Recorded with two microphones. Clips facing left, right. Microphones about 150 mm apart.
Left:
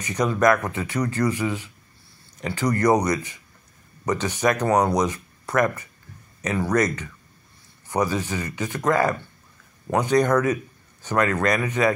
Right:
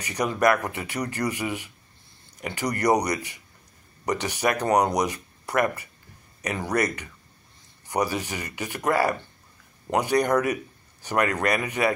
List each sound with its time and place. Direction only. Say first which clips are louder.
0.0 s a man's voice: left 2 dB; 15° right (ahead or behind)